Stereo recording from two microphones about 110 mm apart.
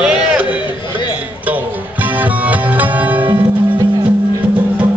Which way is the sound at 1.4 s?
15° right (ahead or behind).